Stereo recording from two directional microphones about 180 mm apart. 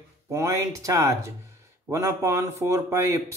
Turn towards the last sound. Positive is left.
turn(degrees=-15)  # may be behind; listen again after turning